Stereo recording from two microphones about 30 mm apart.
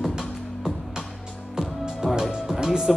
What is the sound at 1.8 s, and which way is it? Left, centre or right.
Music, right.